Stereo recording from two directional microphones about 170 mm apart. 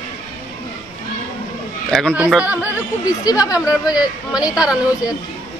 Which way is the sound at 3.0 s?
20° left (ahead or behind).